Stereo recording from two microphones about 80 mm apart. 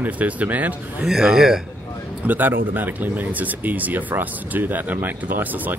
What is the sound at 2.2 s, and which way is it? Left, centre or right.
Speech, right.